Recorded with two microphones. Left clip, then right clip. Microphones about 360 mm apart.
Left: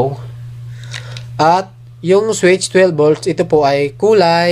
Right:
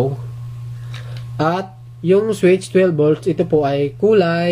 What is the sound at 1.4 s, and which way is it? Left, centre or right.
Speech, centre.